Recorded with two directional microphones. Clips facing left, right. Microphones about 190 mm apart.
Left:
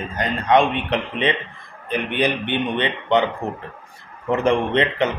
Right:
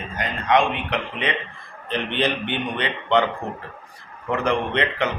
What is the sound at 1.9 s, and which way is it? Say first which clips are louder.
A man's voice: left 2 dB; 10° left (ahead or behind).